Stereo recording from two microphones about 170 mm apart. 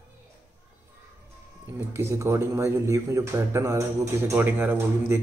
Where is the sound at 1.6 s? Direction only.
15° right (ahead or behind).